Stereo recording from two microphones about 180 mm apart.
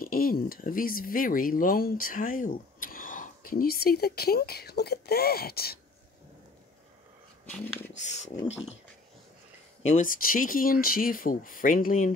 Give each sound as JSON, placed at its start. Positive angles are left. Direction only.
{"t": 0.0, "sound": "speech", "side_deg": 55}
{"t": 7.9, "sound": "speech", "side_deg": 40}
{"t": 9.8, "sound": "speech", "side_deg": 45}